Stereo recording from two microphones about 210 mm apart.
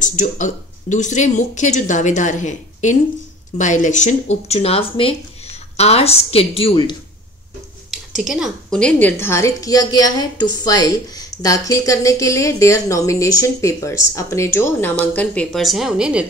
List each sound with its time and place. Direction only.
0.0 s speech: 35° left (ahead or behind)
7.9 s a woman's voice: centre (ahead or behind)